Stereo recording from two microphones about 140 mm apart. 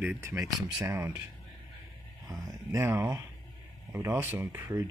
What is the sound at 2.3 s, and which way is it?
Speech, 25° right (ahead or behind).